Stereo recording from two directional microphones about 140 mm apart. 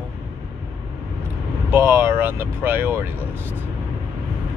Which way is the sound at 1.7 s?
15° right (ahead or behind).